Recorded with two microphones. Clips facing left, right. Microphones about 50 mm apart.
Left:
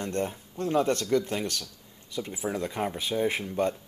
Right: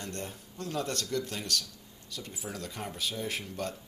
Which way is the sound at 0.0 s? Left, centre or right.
Left.